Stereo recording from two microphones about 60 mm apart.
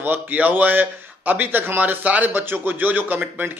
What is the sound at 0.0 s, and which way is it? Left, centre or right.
A man's voice, right.